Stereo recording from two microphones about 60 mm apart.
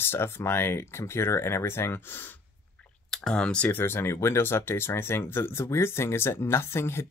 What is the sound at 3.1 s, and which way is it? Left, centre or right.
Speech, centre.